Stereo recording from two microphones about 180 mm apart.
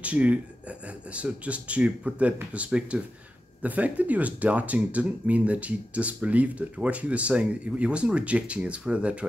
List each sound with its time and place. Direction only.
0.0 s speech: 5° right (ahead or behind)